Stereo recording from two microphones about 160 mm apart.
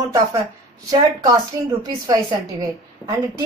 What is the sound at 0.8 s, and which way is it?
A woman's voice, 20° right (ahead or behind).